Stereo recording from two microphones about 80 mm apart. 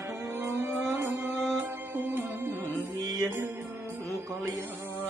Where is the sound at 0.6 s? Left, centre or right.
Right.